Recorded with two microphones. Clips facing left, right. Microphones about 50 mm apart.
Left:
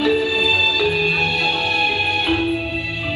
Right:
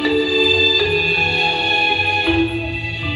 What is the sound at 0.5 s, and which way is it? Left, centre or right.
Music, left.